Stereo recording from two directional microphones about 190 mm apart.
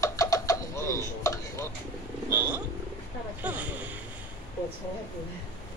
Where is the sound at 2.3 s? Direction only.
5° right (ahead or behind).